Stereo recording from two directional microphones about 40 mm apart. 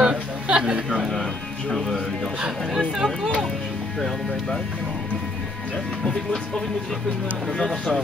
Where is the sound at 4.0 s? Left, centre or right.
Centre.